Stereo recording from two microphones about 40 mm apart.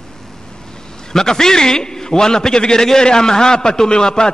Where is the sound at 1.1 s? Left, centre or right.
Centre.